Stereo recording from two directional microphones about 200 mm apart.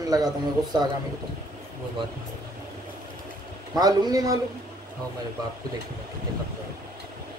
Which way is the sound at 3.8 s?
20° right (ahead or behind).